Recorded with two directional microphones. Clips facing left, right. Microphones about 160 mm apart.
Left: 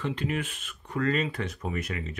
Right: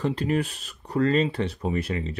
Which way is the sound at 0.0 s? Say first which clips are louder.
Right 6 dB; 35° right (ahead or behind).